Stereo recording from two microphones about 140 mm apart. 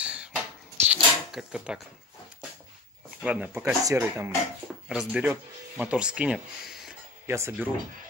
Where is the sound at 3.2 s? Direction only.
10° right (ahead or behind).